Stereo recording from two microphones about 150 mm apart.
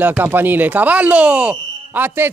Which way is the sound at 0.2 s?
15° right (ahead or behind).